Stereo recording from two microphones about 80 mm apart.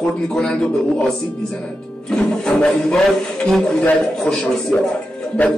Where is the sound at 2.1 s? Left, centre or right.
Centre.